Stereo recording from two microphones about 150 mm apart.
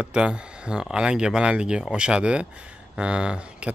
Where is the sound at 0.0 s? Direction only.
5° right (ahead or behind).